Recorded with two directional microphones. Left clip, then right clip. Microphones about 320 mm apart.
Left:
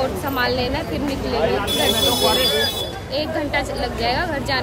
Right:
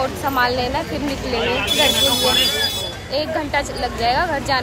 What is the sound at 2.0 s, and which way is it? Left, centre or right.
Speech, centre.